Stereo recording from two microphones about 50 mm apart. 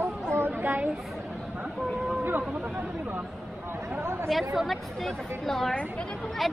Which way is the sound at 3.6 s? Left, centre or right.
Right.